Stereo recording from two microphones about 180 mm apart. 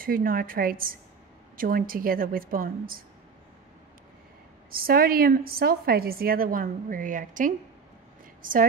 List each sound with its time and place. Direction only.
0.0 s a woman's voice: 50° right (ahead or behind)
4.6 s a woman's voice: 55° right (ahead or behind)